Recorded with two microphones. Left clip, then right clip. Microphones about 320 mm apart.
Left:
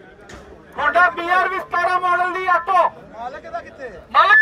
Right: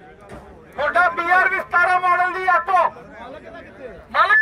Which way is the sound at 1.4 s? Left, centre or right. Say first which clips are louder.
Right 2 dB; centre.